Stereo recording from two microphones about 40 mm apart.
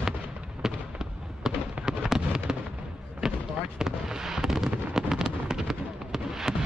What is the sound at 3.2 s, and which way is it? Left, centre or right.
Basketball bounce, centre.